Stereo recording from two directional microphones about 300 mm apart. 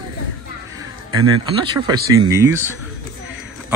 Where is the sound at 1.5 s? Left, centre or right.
Centre.